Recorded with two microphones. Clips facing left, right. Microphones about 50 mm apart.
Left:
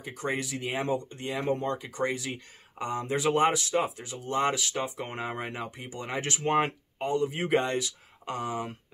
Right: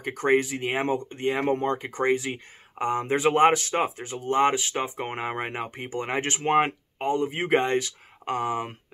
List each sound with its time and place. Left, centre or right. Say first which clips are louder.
0.0 s speech: right 9 dB; right